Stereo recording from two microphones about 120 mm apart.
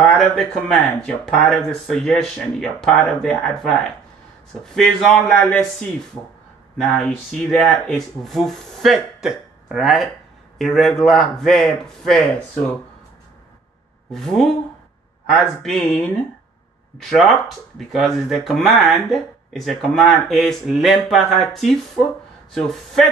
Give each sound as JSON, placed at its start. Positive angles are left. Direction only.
{"t": 0.4, "sound": "speech", "side_deg": 5}
{"t": 14.1, "sound": "speech", "side_deg": 5}